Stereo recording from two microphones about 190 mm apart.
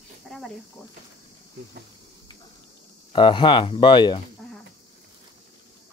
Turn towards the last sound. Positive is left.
turn(degrees=25)  # may be behind; listen again after turning